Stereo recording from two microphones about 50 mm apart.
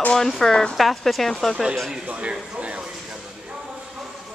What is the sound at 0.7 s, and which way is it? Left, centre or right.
Speech, centre.